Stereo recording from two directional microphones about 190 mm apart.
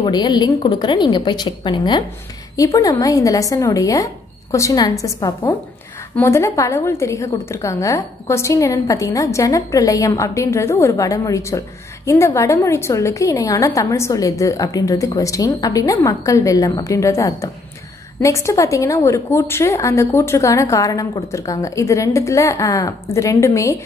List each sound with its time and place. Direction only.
0.0 s a woman's voice: 20° left (ahead or behind)